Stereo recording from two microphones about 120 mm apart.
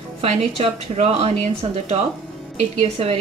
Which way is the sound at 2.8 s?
60° right (ahead or behind).